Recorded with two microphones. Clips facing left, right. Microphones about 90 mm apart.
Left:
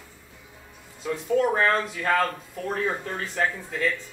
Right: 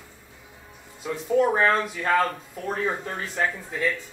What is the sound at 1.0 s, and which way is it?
Speech, 15° right (ahead or behind).